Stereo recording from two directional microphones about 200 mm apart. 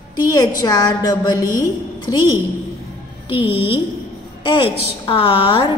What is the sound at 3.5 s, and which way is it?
A woman's voice, 25° left (ahead or behind).